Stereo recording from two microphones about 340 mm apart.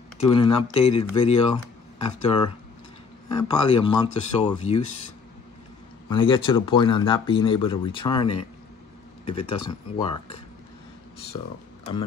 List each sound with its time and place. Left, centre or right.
0.2 s speech: centre
6.0 s speech: centre
11.3 s speech: centre